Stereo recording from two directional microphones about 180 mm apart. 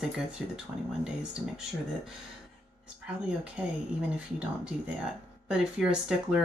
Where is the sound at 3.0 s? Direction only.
5° right (ahead or behind).